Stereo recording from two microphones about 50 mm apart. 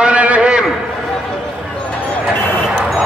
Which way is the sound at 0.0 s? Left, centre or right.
Right.